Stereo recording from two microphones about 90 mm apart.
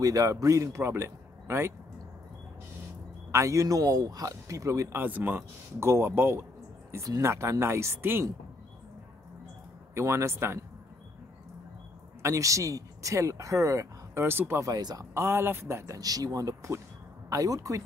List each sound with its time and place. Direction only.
0.0 s speech: 40° right (ahead or behind)
3.3 s speech: 35° right (ahead or behind)
5.0 s speech: 20° right (ahead or behind)
9.9 s speech: 30° right (ahead or behind)
12.2 s speech: 35° right (ahead or behind)
14.6 s speech: 45° right (ahead or behind)
15.1 s speech: 25° right (ahead or behind)